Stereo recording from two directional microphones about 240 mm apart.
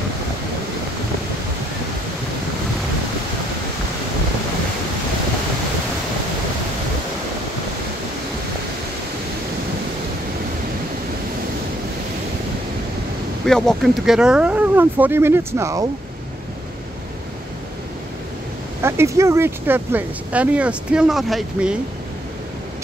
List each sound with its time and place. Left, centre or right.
13.5 s speech: centre
18.8 s speech: centre